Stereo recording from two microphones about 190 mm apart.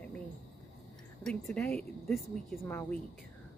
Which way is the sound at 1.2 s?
Centre (ahead or behind).